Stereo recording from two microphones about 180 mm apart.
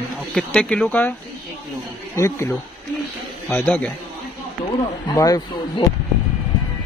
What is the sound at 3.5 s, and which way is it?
Speech, 10° left (ahead or behind).